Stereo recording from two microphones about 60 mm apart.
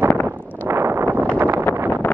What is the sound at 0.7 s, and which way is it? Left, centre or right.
Wind noise, right.